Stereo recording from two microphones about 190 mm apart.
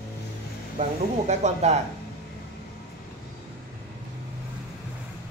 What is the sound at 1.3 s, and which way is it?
Speech, 35° right (ahead or behind).